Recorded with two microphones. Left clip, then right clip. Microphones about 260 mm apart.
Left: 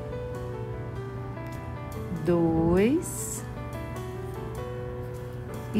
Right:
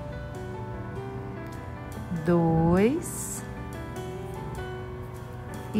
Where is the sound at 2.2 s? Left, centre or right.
Right.